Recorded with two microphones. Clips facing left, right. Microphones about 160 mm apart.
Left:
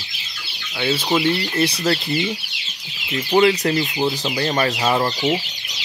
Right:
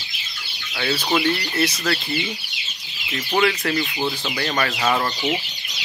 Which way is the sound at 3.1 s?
20° left (ahead or behind).